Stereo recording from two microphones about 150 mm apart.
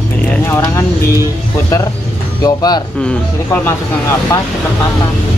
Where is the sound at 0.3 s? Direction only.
15° left (ahead or behind).